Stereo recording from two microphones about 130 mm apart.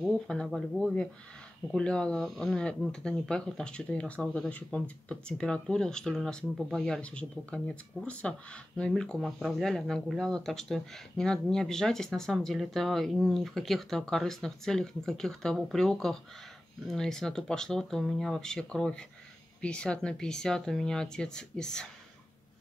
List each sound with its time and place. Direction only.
0.0 s speech: centre (ahead or behind)